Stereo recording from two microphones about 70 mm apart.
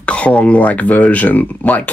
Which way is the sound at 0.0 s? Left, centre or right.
Centre.